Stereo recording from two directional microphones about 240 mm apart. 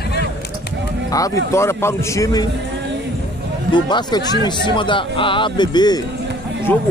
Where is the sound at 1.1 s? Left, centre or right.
Centre.